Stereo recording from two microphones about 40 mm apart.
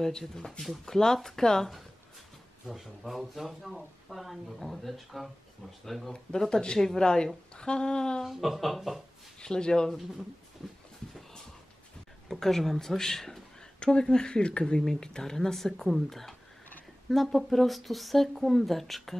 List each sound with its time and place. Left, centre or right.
0.0 s speech: centre
2.6 s speech: centre
6.5 s speech: left
6.8 s speech: centre
7.5 s speech: left
8.2 s speech: centre
9.4 s speech: centre
9.8 s speech: centre
12.3 s speech: centre
13.7 s speech: left
14.8 s speech: centre